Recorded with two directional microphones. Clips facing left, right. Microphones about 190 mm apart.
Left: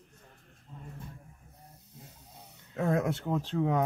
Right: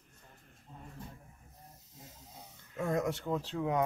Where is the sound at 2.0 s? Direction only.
60° left (ahead or behind).